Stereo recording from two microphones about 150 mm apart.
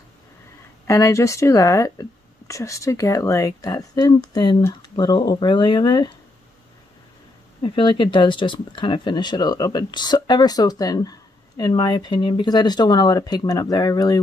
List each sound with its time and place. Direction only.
0.8 s speech: 20° left (ahead or behind)
7.6 s speech: 35° left (ahead or behind)